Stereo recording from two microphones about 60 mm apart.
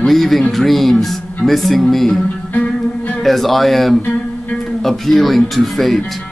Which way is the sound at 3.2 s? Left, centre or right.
Centre.